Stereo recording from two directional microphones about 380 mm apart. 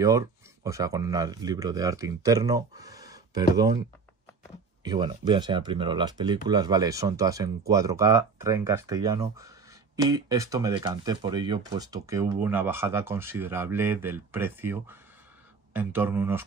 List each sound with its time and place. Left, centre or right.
0.7 s speech: centre
4.8 s speech: centre